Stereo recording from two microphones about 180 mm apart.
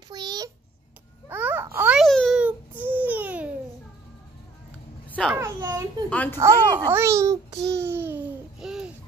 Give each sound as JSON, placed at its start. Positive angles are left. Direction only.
{"t": 0.1, "sound": "a sound", "side_deg": -25}
{"t": 1.3, "sound": "babbling", "side_deg": -10}
{"t": 2.0, "sound": "babbling", "side_deg": 0}
{"t": 5.3, "sound": "a sound", "side_deg": -15}
{"t": 6.0, "sound": "speech", "side_deg": 10}
{"t": 6.3, "sound": "a child's voice", "side_deg": -15}
{"t": 7.7, "sound": "babbling", "side_deg": -10}